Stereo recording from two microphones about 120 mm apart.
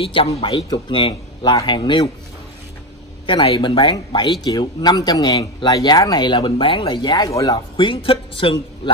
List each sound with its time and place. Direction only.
0.0 s a man's voice: 50° left (ahead or behind)
3.3 s speech: 45° left (ahead or behind); by 7.6 s 30° left (ahead or behind)
7.7 s a man's voice: 45° left (ahead or behind)